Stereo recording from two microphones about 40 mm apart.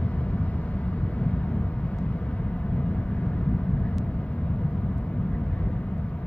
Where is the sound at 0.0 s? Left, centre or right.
Left.